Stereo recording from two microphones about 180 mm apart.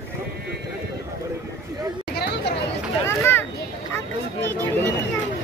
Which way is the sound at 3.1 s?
15° left (ahead or behind).